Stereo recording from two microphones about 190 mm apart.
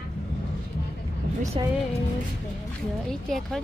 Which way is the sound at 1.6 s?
25° right (ahead or behind).